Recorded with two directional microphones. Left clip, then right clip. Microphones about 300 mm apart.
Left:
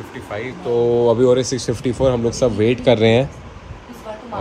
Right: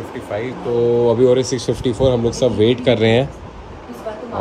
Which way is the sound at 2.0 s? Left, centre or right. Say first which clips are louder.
Right 1 dB; centre.